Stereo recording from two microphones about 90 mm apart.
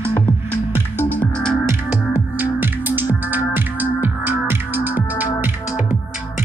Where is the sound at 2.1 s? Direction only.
20° right (ahead or behind).